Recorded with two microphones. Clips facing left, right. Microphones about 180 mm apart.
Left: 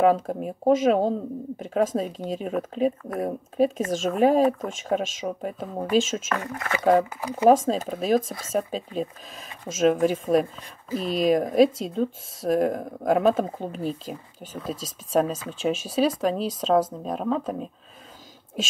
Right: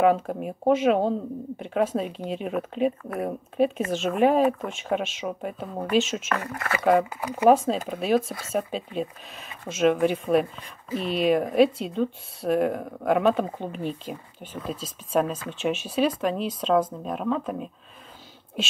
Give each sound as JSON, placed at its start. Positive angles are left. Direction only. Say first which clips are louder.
{"t": 0.0, "sound": "speech", "louder": "left 1 dB", "side_deg": 40}
{"t": 6.4, "sound": "speech", "louder": "even", "side_deg": 20}
{"t": 6.8, "sound": "speech", "louder": "left 1 dB", "side_deg": 40}